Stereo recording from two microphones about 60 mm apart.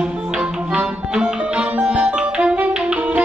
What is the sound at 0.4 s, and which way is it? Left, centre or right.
Music, centre.